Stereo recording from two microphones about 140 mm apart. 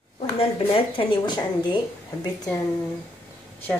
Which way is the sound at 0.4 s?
40° left (ahead or behind).